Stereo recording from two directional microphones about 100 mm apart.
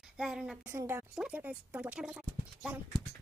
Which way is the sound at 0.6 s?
30° right (ahead or behind).